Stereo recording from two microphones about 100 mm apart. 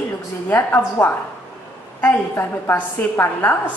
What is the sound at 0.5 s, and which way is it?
A woman's voice, 20° left (ahead or behind).